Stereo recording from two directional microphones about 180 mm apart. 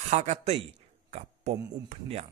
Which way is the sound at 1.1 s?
40° right (ahead or behind).